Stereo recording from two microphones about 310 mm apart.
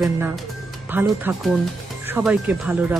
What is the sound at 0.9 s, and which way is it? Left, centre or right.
Speech, centre.